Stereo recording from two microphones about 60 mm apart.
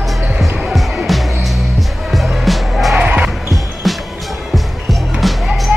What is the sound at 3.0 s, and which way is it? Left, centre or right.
Basketball bounce, centre.